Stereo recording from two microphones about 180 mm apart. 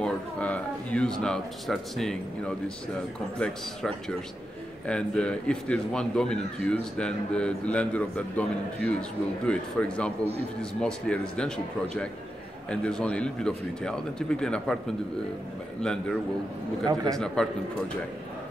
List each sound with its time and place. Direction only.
0.0 s a man's voice: 5° left (ahead or behind)
16.8 s a man's voice: 20° right (ahead or behind)